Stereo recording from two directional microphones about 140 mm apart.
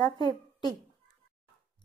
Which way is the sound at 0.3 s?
30° left (ahead or behind).